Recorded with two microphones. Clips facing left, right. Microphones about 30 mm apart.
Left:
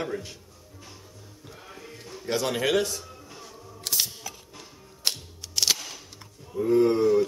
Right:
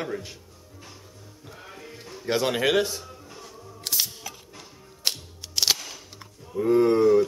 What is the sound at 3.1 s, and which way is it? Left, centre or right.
Music, centre.